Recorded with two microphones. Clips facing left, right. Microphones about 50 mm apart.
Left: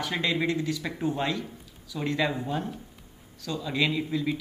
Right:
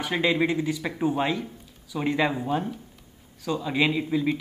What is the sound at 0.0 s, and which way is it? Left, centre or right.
Speech, centre.